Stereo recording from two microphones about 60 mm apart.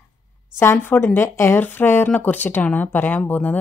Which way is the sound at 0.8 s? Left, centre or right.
Left.